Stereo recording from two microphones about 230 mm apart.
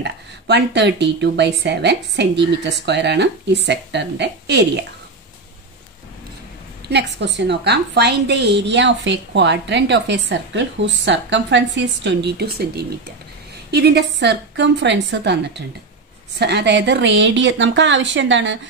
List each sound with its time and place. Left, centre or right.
0.0 s a woman's voice: right
6.9 s a woman's voice: right